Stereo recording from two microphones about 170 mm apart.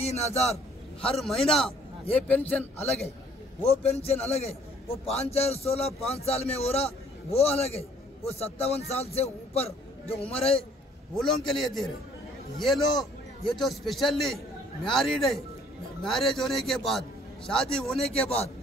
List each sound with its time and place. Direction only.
0.0 s a man's voice: 40° left (ahead or behind)
1.1 s a man's voice: centre (ahead or behind)
3.6 s a man's voice: 35° left (ahead or behind)
11.1 s a man's voice: centre (ahead or behind)
18.1 s a man's voice: 35° left (ahead or behind)